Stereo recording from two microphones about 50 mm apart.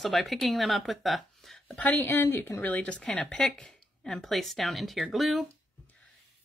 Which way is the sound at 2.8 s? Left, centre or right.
Left.